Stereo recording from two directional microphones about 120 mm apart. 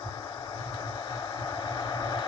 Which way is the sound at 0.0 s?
35° left (ahead or behind).